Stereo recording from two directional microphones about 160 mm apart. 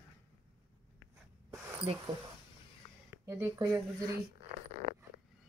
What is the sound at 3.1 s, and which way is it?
Speech, 20° right (ahead or behind).